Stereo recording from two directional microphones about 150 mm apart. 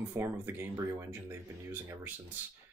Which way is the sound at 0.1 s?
15° right (ahead or behind).